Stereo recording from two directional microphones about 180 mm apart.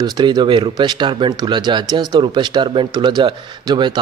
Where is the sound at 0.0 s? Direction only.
25° right (ahead or behind).